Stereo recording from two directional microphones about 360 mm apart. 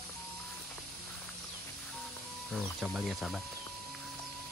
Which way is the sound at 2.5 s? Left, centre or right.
Centre.